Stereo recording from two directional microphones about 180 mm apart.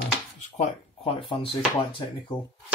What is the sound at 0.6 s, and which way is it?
Speech, 30° left (ahead or behind).